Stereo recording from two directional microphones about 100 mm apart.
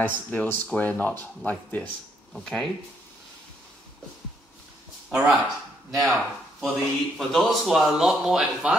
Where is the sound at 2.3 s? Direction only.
5° left (ahead or behind).